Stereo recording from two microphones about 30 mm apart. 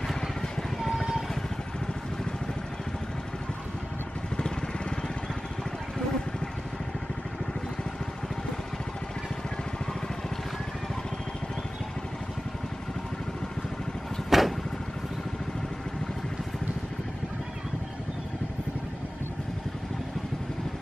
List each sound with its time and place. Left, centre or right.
0.1 s vehicle: centre
14.3 s vehicle: centre